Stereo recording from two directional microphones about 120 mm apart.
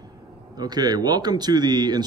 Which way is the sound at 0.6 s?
35° right (ahead or behind).